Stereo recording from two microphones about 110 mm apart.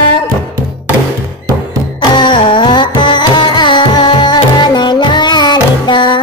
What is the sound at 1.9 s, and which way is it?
Carnatic music, 45° left (ahead or behind).